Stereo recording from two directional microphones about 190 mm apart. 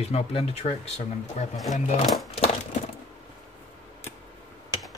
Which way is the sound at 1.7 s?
40° left (ahead or behind).